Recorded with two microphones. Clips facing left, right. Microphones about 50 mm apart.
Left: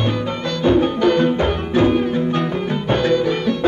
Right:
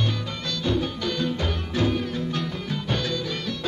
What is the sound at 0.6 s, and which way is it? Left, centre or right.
Music, left.